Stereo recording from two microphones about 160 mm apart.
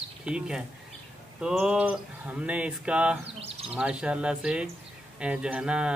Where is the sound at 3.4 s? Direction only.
40° right (ahead or behind).